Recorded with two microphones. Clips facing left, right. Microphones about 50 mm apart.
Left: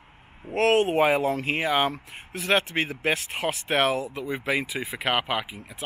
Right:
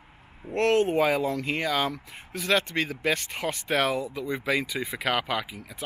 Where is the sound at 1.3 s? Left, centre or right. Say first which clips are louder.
Left 3 dB; left.